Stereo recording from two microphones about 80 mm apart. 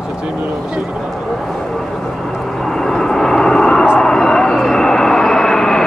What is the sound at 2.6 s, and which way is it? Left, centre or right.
Vehicle, centre.